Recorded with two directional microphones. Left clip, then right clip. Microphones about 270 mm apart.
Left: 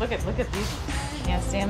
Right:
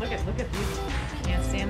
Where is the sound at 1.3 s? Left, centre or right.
Centre.